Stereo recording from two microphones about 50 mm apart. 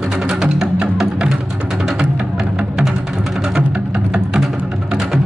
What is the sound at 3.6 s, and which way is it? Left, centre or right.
Music, right.